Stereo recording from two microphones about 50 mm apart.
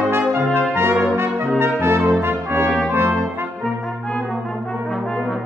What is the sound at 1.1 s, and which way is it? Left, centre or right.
Brass instrument, right.